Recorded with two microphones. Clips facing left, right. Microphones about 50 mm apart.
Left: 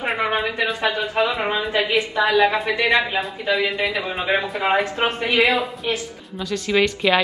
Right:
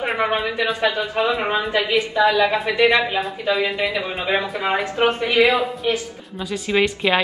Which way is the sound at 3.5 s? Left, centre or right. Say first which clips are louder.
Left 1 dB; centre.